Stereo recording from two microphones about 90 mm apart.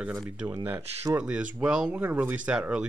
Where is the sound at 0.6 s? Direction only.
20° right (ahead or behind).